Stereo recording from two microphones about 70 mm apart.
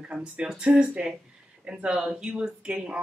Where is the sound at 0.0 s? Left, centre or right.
Centre.